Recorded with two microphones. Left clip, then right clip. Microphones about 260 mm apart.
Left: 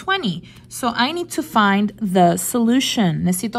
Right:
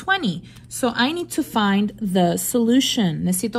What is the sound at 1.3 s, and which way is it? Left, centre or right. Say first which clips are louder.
A woman's voice: left 4 dB; left.